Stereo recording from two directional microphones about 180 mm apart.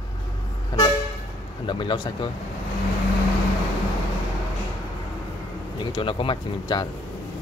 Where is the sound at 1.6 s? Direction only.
25° left (ahead or behind).